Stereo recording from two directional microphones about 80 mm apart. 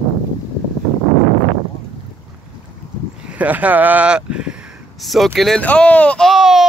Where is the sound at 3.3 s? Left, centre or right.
Centre.